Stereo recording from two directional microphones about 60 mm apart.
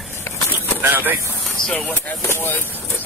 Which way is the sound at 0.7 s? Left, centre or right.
Right.